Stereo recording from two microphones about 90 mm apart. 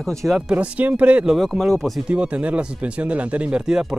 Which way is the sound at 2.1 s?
15° right (ahead or behind).